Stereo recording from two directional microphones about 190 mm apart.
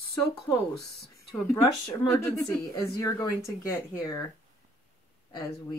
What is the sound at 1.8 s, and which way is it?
Speech, 15° left (ahead or behind).